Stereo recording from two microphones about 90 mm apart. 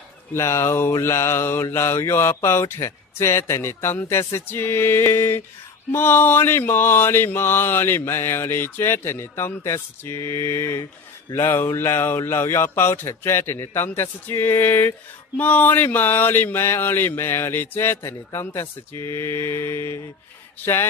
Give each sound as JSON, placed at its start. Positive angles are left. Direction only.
{"t": 0.3, "sound": "speech", "side_deg": 35}